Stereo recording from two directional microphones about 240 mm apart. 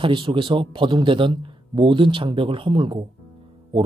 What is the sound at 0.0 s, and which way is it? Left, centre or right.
Speech, right.